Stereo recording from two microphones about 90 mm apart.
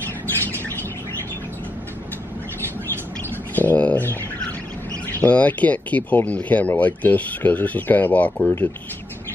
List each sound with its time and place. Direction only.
3.5 s bird: 15° left (ahead or behind)
5.2 s speech: 15° left (ahead or behind)